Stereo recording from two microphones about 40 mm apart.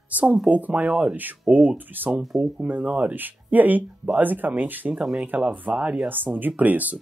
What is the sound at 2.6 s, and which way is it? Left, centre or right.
Speech, right.